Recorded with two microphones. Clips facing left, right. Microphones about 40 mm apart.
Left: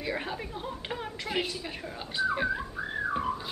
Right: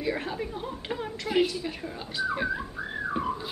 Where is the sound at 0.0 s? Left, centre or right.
Centre.